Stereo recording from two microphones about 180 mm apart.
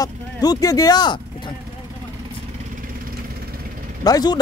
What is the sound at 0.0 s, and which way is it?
Speech, 20° left (ahead or behind).